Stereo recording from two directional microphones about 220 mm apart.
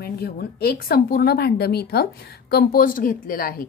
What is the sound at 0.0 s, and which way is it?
A woman's voice, 45° left (ahead or behind).